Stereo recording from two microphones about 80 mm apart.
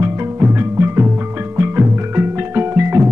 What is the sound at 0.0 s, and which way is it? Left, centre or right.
Music, right.